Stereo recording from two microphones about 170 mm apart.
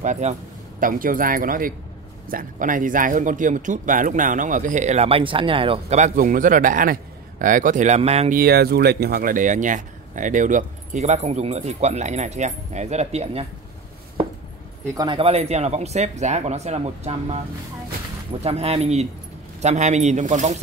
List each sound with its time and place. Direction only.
0.0 s speech: 45° right (ahead or behind)
8.3 s speech: 65° right (ahead or behind); by 13.5 s 35° right (ahead or behind)
15.0 s speech: 30° right (ahead or behind)
18.4 s speech: 40° right (ahead or behind)